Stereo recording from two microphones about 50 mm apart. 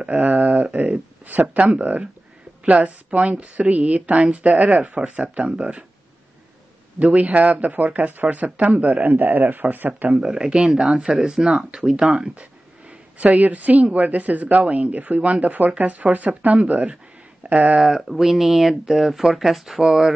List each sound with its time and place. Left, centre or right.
0.1 s speech: right
7.0 s speech: right
10.2 s speech: centre
12.4 s a sound: right
13.9 s speech: right
17.7 s speech: centre